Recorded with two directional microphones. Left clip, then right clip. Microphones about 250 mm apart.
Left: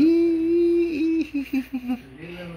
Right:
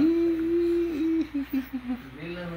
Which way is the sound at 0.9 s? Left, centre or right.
Left.